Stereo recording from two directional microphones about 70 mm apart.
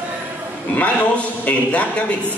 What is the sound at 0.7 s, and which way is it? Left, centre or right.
A man's voice, left.